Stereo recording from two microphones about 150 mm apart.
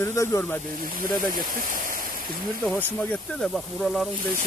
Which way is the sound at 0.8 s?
70° right (ahead or behind).